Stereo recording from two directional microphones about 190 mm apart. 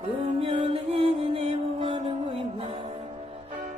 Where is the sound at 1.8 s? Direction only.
30° right (ahead or behind).